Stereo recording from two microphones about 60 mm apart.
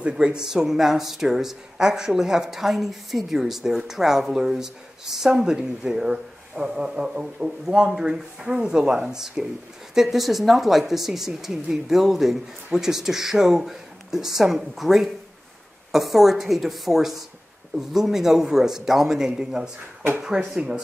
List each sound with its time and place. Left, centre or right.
0.1 s speech: centre